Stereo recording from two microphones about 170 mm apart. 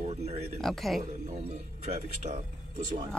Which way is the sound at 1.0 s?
40° right (ahead or behind).